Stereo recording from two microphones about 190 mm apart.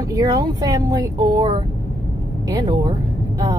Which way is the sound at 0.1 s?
20° right (ahead or behind).